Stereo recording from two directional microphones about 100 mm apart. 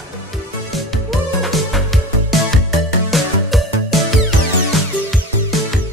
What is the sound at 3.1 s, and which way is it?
Music, centre (ahead or behind).